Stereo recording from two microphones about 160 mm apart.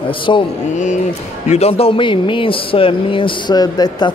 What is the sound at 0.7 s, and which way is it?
Speech, 50° left (ahead or behind).